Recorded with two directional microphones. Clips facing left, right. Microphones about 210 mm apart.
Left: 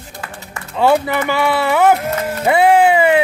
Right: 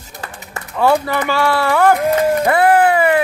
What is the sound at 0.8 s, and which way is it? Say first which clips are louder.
Speech: left 1 dB; 15° left (ahead or behind).